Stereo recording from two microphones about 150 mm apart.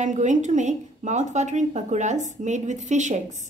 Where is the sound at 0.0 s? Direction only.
55° right (ahead or behind).